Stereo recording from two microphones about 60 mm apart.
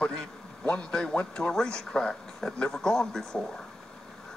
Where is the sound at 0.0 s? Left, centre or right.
Centre.